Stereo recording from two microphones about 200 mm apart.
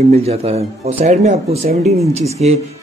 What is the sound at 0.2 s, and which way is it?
Speech, 30° right (ahead or behind).